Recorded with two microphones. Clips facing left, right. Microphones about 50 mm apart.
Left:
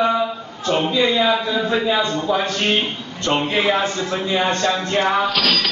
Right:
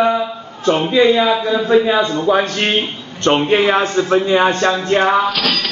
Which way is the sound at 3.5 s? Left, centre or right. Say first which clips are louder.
Right 5 dB; right.